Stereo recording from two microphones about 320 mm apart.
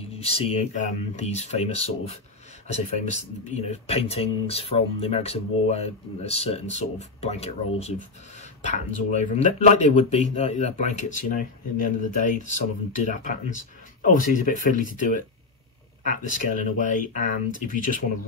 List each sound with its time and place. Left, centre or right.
0.1 s speech: centre
16.0 s speech: left